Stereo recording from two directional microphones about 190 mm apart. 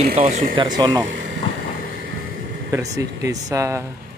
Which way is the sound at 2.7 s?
15° right (ahead or behind).